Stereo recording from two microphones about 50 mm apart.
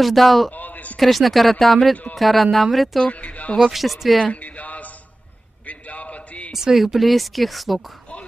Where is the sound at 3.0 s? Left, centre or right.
Left.